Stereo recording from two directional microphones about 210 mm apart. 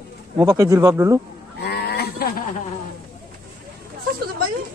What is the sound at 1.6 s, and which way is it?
Livestock, 50° left (ahead or behind).